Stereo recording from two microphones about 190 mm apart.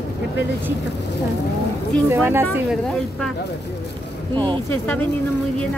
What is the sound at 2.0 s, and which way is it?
Speech, 10° right (ahead or behind).